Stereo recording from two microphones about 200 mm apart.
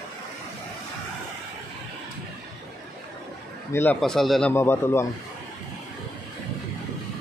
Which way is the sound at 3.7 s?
10° left (ahead or behind).